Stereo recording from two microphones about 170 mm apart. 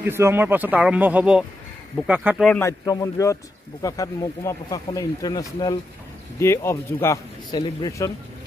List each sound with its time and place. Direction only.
0.0 s speech: 15° right (ahead or behind)
2.6 s speech: 20° left (ahead or behind)